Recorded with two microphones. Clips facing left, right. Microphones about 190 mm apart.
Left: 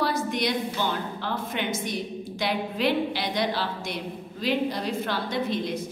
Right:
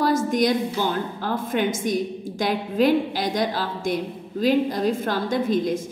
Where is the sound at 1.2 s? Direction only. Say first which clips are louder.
Right 8 dB; 45° right (ahead or behind).